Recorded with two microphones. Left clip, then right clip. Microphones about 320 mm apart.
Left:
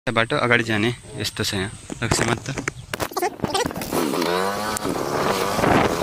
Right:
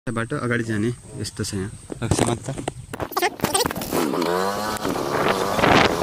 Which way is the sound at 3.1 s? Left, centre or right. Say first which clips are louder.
Right 4 dB; centre.